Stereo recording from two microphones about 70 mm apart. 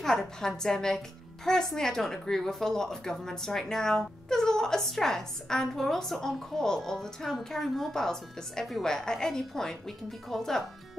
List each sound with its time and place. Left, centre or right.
0.0 s a woman's voice: centre